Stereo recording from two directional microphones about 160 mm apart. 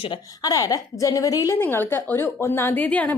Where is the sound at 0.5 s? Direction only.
20° left (ahead or behind).